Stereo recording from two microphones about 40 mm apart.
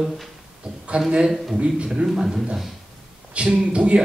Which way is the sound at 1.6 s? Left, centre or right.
Right.